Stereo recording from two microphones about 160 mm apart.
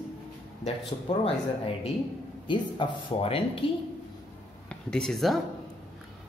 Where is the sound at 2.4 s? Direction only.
30° left (ahead or behind).